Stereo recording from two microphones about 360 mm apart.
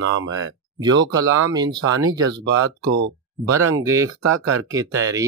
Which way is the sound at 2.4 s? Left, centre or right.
Right.